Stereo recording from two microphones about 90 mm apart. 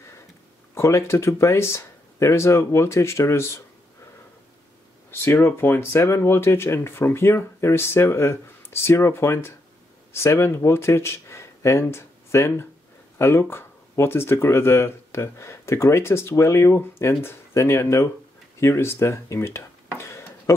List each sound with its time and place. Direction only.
0.7 s speech: 30° left (ahead or behind)
5.1 s speech: 25° left (ahead or behind)
20.0 s tick-tock: 30° left (ahead or behind)